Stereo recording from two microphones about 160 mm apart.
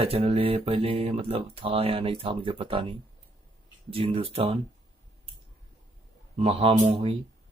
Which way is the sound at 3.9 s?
35° right (ahead or behind).